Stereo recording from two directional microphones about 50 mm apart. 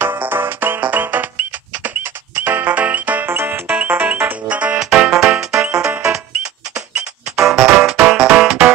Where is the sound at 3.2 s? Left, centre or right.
Right.